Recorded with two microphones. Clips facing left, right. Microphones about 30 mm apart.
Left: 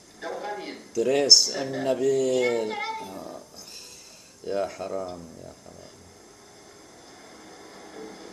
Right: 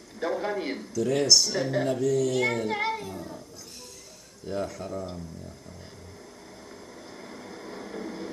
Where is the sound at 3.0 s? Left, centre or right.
Centre.